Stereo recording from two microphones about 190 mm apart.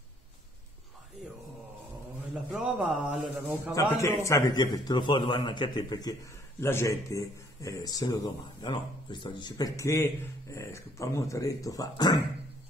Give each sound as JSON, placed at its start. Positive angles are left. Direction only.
{"t": 2.5, "sound": "speech", "side_deg": -5}
{"t": 3.7, "sound": "a man's voice", "side_deg": 15}